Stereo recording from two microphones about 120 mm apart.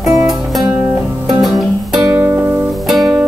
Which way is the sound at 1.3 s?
Centre (ahead or behind).